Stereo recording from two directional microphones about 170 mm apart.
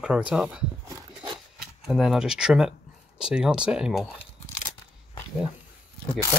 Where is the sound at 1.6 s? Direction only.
Centre (ahead or behind).